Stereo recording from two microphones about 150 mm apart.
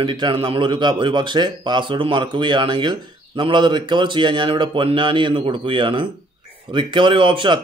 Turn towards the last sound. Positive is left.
turn(degrees=-35)  # may be behind; listen again after turning